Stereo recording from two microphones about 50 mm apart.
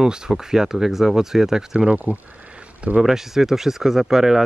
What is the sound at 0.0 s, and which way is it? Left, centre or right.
Speech, centre.